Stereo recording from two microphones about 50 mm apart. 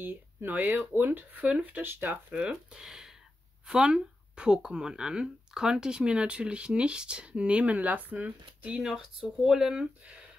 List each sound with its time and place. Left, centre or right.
0.0 s speech: right
1.9 s speech: right
2.3 s speech: centre
8.8 s speech: centre